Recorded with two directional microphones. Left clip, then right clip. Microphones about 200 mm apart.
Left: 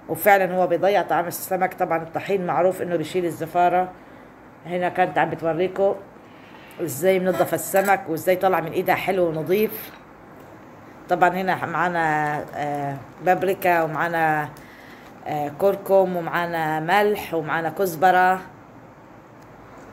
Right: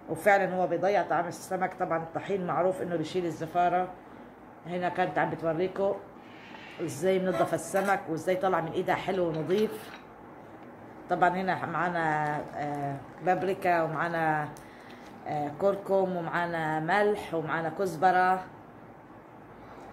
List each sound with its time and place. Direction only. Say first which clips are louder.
0.1 s a woman's voice: left 7 dB; 20° left (ahead or behind)
7.0 s a woman's voice: left 7 dB; 20° left (ahead or behind)
11.1 s speech: left 7 dB; 15° left (ahead or behind)